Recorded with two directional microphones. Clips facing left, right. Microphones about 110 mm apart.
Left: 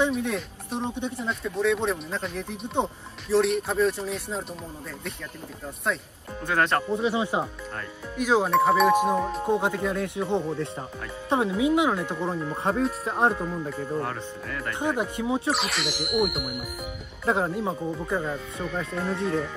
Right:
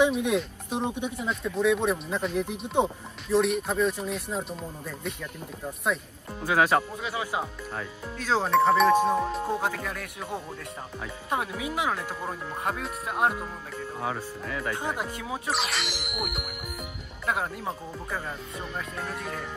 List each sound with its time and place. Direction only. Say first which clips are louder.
0.0 s speech: right 2 dB; 10° right (ahead or behind)
1.1 s speech: even; centre (ahead or behind)
6.4 s speech: right 1 dB; 5° right (ahead or behind)
6.9 s speech: left 7 dB; 25° left (ahead or behind)
8.2 s speech: left 4 dB; 15° left (ahead or behind)
8.5 s speech: right 2 dB; centre (ahead or behind)
9.1 s speech: left 1 dB; centre (ahead or behind)
9.5 s speech: left 5 dB; 20° left (ahead or behind)
13.9 s speech: left 2 dB; centre (ahead or behind)
15.0 s speech: left 6 dB; 20° left (ahead or behind)
15.5 s speech: left 2 dB; centre (ahead or behind)
17.3 s speech: left 5 dB; 25° left (ahead or behind)